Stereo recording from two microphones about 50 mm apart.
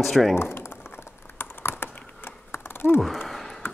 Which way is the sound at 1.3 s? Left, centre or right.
Left.